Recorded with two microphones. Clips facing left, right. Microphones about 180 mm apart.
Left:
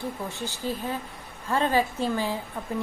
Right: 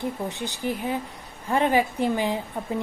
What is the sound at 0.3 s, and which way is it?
A woman's voice, 15° right (ahead or behind).